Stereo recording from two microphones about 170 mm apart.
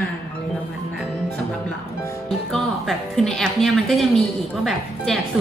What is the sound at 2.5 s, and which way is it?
A woman's voice, centre (ahead or behind).